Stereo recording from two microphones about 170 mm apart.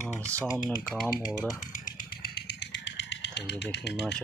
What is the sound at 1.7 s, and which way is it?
Vehicle, 55° left (ahead or behind).